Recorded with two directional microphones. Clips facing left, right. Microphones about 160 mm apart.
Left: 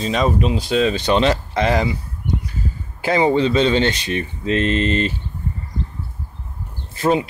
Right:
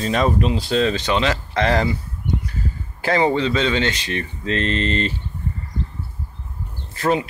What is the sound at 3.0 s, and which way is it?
Speech, 15° left (ahead or behind).